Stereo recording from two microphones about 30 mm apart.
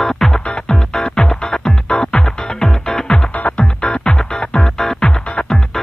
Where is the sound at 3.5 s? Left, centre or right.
Left.